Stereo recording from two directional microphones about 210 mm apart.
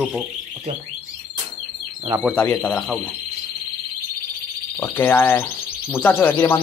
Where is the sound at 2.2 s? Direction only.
5° left (ahead or behind).